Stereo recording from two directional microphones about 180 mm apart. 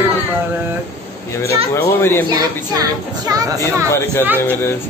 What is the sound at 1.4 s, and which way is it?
Speech, 15° left (ahead or behind).